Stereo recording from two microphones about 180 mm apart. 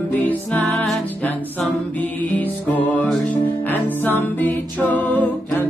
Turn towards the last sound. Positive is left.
turn(degrees=10)  # may be behind; listen again after turning